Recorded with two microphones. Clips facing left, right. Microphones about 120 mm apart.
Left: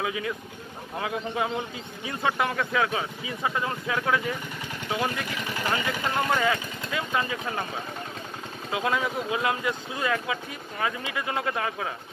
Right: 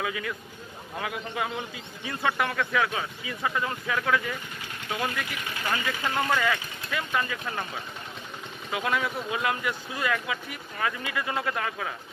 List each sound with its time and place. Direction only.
0.0 s speech: 25° left (ahead or behind)
8.7 s speech: 25° left (ahead or behind)